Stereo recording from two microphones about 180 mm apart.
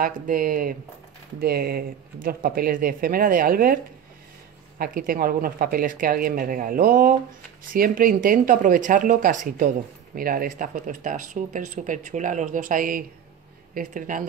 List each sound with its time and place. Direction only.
0.0 s speech: 50° right (ahead or behind)